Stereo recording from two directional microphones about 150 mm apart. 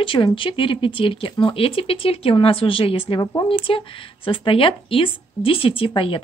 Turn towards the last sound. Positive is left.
turn(degrees=35)  # may be behind; listen again after turning